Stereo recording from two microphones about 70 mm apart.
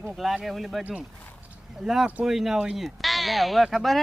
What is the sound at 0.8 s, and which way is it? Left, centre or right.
Speech, right.